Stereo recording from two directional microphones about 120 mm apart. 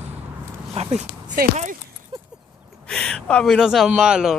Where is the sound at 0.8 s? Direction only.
55° right (ahead or behind).